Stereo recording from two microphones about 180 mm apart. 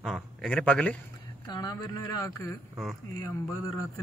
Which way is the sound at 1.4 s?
25° left (ahead or behind).